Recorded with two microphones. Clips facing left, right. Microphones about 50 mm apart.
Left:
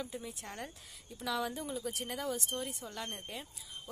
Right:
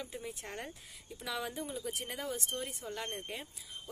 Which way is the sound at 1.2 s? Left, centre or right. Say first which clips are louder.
Left 3 dB; centre.